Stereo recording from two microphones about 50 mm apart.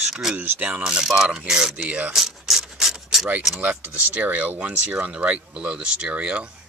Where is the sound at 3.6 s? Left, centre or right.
Right.